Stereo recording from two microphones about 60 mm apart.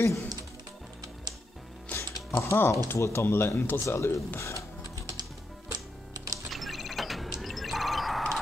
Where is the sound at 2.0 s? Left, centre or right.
Left.